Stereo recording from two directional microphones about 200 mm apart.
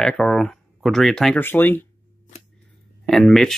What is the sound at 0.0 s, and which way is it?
Speech, 5° left (ahead or behind).